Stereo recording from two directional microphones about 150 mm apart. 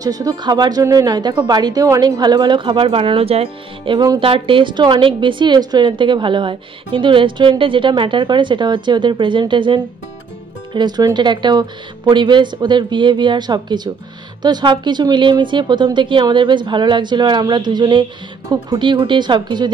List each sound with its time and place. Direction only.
0.0 s a woman's voice: 25° right (ahead or behind)